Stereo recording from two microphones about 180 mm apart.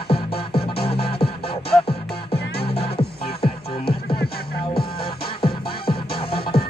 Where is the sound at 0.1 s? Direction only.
30° left (ahead or behind).